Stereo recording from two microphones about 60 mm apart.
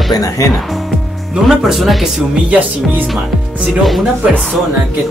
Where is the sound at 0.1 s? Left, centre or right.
Left.